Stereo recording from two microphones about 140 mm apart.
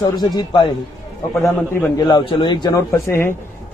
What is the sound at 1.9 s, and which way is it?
Speech, 35° left (ahead or behind).